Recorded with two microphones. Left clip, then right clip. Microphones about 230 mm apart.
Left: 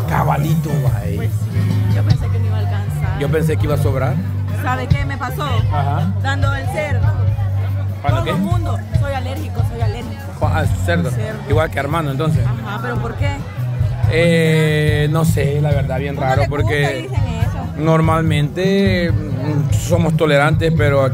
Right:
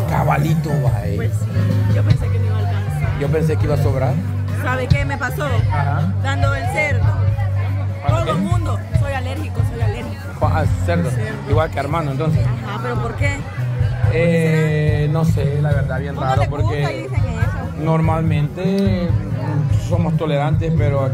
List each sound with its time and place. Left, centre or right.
0.1 s speech: centre
3.2 s a man's voice: centre
10.4 s a man's voice: centre
14.1 s speech: left